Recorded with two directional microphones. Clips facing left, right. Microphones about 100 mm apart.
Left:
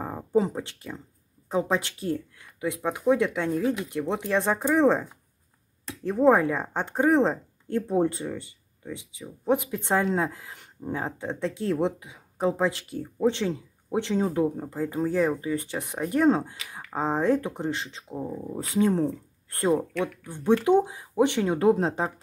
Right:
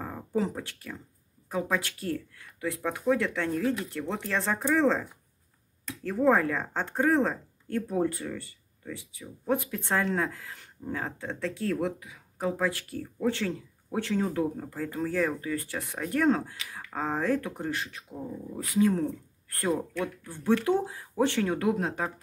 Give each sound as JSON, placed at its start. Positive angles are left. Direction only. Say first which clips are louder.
{"t": 0.0, "sound": "speech", "louder": "left 5 dB", "side_deg": 20}